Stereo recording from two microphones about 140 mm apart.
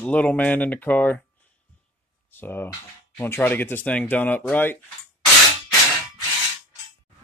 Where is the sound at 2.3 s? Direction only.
15° left (ahead or behind).